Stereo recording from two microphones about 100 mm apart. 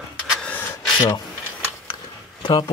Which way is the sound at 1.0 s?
45° left (ahead or behind).